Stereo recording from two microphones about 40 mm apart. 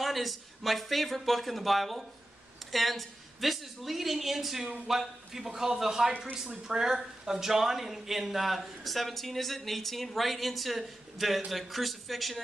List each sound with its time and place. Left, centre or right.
0.0 s a man's voice: centre